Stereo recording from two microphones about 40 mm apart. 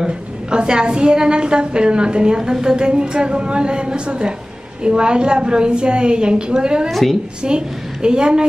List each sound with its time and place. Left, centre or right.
0.5 s a woman's voice: right
6.9 s a woman's voice: centre
7.4 s a woman's voice: right